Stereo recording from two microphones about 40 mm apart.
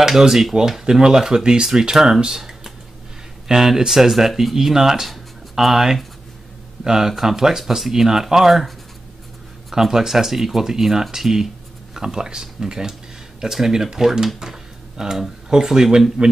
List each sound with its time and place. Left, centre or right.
0.0 s speech: centre
5.1 s a sound: centre
6.8 s speech: centre